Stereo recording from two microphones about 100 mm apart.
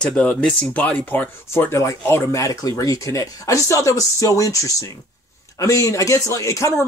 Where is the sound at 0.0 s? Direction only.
10° left (ahead or behind).